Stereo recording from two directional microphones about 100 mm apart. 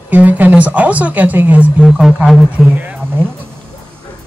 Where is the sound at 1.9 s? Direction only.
Centre (ahead or behind).